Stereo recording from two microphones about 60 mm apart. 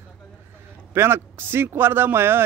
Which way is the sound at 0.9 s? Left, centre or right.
Right.